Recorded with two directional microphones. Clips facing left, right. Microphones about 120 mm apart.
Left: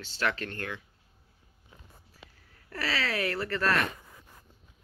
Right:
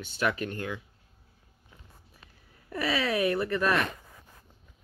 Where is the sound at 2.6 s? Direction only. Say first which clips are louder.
Right 4 dB; 15° right (ahead or behind).